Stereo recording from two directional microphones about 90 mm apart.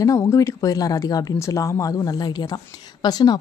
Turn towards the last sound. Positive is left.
turn(degrees=50)  # may be behind; listen again after turning